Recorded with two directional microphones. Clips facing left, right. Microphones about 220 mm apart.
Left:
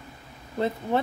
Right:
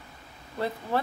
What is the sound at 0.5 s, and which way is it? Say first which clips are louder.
Speech: left 4 dB; 20° left (ahead or behind).